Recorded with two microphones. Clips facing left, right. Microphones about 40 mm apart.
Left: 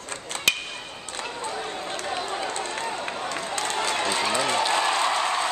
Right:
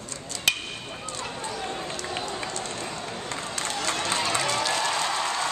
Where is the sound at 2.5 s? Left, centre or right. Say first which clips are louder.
Left 4 dB; left.